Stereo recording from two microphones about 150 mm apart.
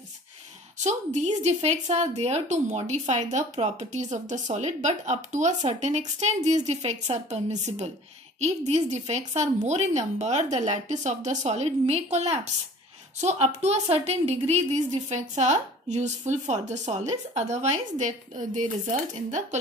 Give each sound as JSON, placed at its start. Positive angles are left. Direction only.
{"t": 0.8, "sound": "a woman's voice", "side_deg": -50}